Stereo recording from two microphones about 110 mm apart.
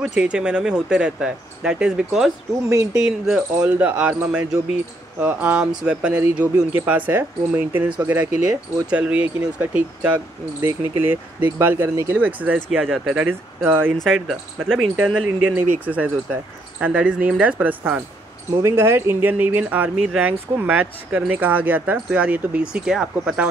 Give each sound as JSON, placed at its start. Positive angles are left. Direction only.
{"t": 0.0, "sound": "speech", "side_deg": -10}
{"t": 2.7, "sound": "speech", "side_deg": -30}
{"t": 3.0, "sound": "speech", "side_deg": -5}
{"t": 13.9, "sound": "speech", "side_deg": 0}